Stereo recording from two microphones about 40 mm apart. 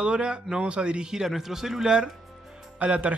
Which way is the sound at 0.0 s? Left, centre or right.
Right.